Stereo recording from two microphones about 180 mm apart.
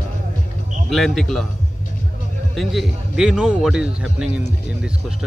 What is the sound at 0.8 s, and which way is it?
Speech, centre (ahead or behind).